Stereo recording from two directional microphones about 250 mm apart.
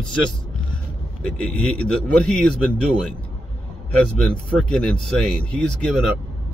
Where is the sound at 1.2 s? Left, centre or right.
Centre.